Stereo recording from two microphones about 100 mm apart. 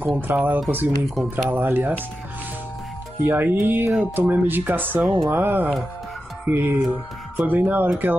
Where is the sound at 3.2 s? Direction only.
20° right (ahead or behind).